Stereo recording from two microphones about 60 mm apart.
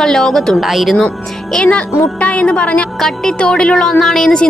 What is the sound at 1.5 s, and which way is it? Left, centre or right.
Speech, centre.